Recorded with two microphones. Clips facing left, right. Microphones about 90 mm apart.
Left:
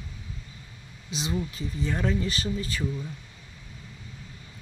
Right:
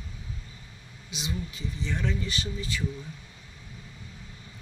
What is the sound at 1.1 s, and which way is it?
Speech, 35° left (ahead or behind).